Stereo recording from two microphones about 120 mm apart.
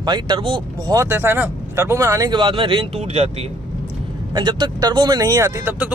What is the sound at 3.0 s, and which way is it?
Speech, 60° right (ahead or behind).